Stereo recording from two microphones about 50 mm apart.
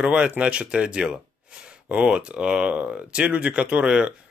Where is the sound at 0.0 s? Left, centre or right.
Centre.